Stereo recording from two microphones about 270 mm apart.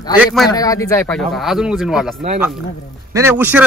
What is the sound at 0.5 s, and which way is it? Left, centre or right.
Speech, centre.